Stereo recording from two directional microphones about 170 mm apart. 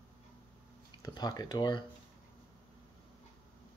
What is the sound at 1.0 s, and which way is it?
Speech, 25° left (ahead or behind).